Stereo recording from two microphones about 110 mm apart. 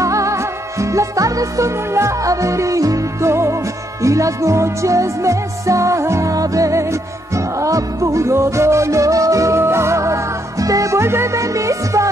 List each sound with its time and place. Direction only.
0.0 s music: 30° right (ahead or behind)